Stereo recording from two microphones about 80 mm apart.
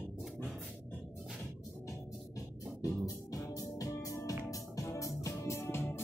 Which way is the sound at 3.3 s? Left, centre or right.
Left.